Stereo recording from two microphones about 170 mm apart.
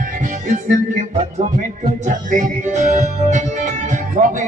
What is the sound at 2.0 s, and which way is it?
Music, 45° right (ahead or behind).